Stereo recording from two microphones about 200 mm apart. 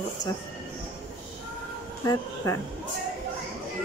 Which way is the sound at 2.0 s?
15° left (ahead or behind).